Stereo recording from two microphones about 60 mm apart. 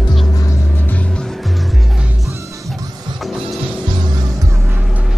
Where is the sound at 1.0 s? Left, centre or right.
Centre.